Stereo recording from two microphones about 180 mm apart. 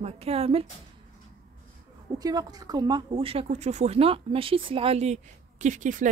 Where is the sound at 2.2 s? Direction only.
20° right (ahead or behind).